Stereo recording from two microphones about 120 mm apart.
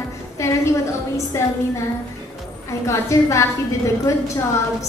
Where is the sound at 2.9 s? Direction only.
25° left (ahead or behind).